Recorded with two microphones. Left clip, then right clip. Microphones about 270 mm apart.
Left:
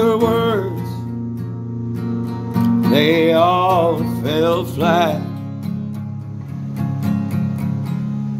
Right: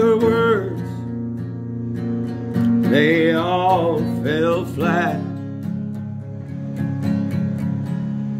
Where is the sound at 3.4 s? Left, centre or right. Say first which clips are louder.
Left 4 dB; centre.